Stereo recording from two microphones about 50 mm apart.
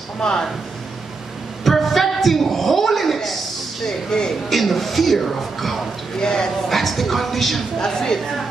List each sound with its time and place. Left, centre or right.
0.2 s speech: centre
1.6 s a sound: centre
3.8 s speech: centre
4.5 s a woman's voice: centre
6.2 s speech: centre
6.7 s a woman's voice: centre